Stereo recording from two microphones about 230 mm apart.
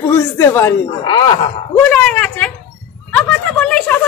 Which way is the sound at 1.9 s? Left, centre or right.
Centre.